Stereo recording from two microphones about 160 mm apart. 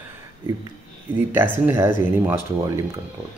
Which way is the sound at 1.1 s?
15° right (ahead or behind).